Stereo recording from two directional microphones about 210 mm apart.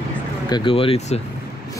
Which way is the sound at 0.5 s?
25° left (ahead or behind).